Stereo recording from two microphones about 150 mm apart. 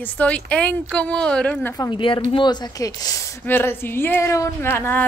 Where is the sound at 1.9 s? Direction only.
35° left (ahead or behind).